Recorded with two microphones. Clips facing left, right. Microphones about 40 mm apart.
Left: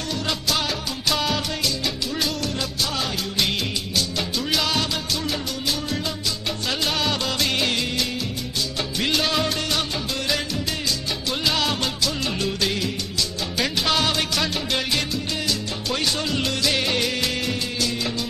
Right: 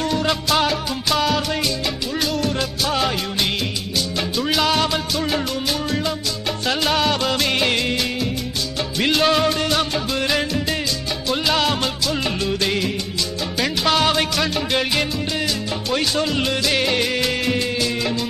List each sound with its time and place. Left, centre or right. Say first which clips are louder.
0.7 s music: right 4 dB; centre
4.2 s music: right 6 dB; centre
13.6 s music: right 3 dB; centre